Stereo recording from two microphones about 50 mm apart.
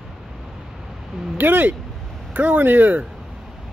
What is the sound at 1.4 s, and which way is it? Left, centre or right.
Speech, right.